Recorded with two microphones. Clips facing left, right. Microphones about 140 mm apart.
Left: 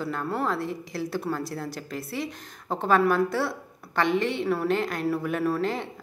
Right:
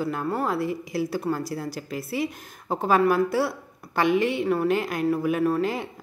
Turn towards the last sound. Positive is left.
turn(degrees=0)  # may be behind; listen again after turning